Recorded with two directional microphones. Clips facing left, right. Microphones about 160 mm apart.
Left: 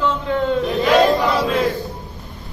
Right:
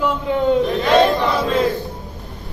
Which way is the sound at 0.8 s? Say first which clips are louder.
Even; centre (ahead or behind).